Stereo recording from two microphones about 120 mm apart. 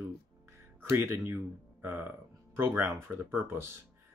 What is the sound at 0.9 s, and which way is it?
Speech, 20° right (ahead or behind).